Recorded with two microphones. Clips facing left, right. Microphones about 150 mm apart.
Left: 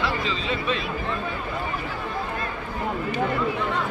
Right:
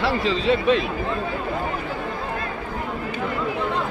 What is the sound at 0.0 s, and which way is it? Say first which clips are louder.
Speech: right 6 dB; 75° right (ahead or behind).